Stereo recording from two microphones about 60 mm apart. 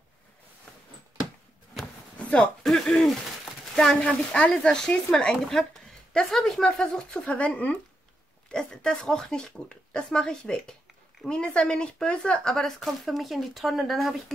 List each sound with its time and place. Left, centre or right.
2.1 s a sound: centre
2.6 s speech: centre; by 7.7 s left
8.5 s speech: centre